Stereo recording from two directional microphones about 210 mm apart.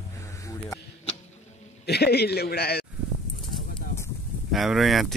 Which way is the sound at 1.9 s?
50° left (ahead or behind).